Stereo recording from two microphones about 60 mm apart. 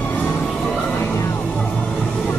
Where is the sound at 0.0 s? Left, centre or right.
Left.